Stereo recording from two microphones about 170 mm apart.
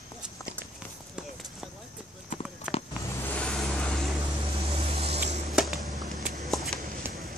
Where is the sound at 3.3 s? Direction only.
5° left (ahead or behind).